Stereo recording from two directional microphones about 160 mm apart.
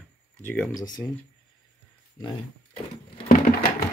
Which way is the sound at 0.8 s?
25° left (ahead or behind).